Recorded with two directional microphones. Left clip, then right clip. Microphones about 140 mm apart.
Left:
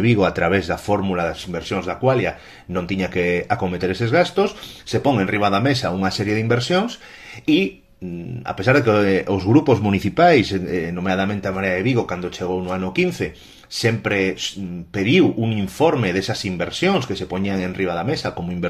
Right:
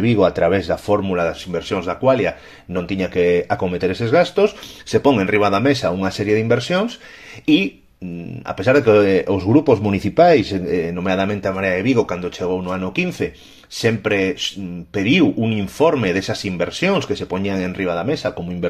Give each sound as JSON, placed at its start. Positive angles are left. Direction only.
{"t": 0.0, "sound": "speech", "side_deg": -5}
{"t": 1.1, "sound": "speech", "side_deg": -30}
{"t": 2.7, "sound": "speech", "side_deg": -20}
{"t": 4.9, "sound": "speech", "side_deg": -40}
{"t": 7.4, "sound": "speech", "side_deg": -30}